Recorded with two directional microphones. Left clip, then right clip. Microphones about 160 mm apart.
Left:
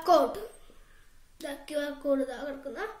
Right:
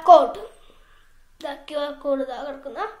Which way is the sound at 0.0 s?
30° left (ahead or behind).